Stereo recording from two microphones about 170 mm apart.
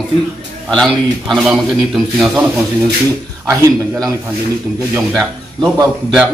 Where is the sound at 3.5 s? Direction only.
20° right (ahead or behind).